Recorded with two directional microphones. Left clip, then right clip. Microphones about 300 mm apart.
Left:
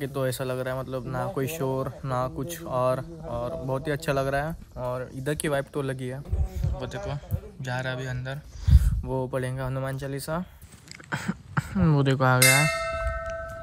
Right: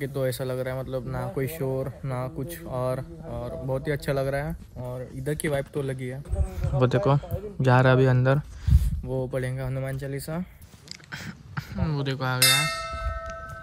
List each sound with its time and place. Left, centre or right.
0.0 s speech: centre
6.6 s a man's voice: centre
8.7 s a sound: left
9.0 s speech: centre